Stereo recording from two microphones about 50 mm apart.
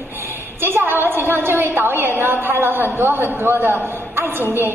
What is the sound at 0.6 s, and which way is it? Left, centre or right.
A woman's voice, right.